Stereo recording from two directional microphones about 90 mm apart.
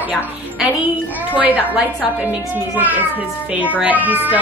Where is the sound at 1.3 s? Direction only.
20° right (ahead or behind).